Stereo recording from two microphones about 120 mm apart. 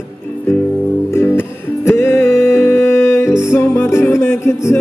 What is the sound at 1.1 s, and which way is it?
Music, 20° left (ahead or behind).